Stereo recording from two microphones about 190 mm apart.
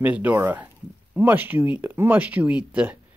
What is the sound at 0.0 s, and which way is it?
Speech, 10° right (ahead or behind).